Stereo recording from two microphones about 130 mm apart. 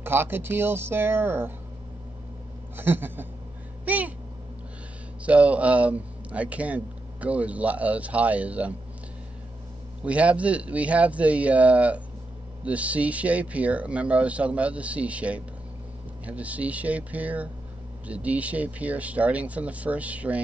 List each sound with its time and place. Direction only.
0.0 s a man's voice: 15° right (ahead or behind)
2.8 s a man's voice: 15° right (ahead or behind)
5.2 s a man's voice: 10° right (ahead or behind)
10.0 s a man's voice: 10° right (ahead or behind)